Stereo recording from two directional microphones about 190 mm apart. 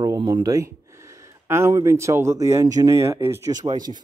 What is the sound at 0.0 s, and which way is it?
Speech, 15° right (ahead or behind).